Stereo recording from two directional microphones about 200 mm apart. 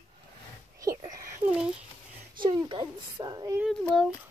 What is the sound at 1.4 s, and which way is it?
A child's voice, 25° right (ahead or behind).